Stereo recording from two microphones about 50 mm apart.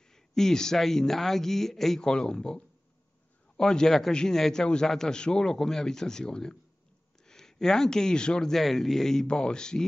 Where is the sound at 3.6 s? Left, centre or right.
Centre.